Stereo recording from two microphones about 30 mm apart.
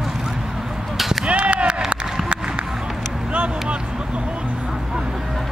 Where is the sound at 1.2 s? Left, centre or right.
Right.